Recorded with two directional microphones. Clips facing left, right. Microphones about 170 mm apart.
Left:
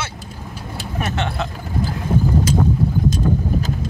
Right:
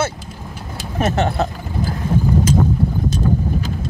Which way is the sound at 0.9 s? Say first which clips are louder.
Right 6 dB; 40° right (ahead or behind).